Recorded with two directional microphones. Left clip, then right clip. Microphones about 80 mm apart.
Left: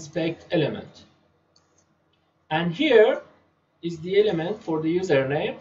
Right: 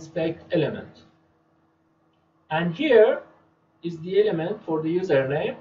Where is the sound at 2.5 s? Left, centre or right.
Left.